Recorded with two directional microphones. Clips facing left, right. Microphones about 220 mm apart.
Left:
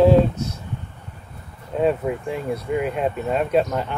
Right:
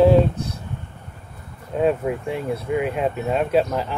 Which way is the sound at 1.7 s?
Centre (ahead or behind).